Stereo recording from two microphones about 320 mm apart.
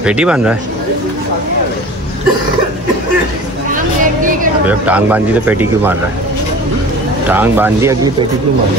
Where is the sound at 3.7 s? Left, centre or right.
Right.